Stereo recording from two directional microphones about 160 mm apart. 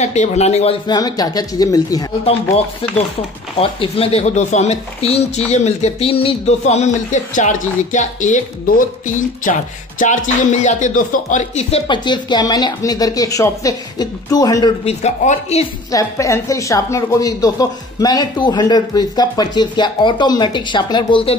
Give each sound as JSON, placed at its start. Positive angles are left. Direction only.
{"t": 0.0, "sound": "speech", "side_deg": 45}
{"t": 0.8, "sound": "a woman's voice", "side_deg": 25}
{"t": 3.5, "sound": "speech", "side_deg": 35}
{"t": 11.9, "sound": "a woman's voice", "side_deg": 30}
{"t": 14.9, "sound": "speech", "side_deg": 45}
{"t": 15.9, "sound": "a woman's voice", "side_deg": 20}